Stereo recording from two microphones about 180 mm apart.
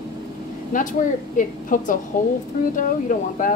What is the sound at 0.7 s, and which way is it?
A woman's voice, 45° left (ahead or behind).